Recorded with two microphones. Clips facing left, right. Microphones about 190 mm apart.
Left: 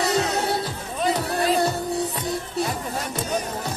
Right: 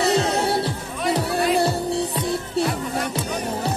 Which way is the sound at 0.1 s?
30° right (ahead or behind).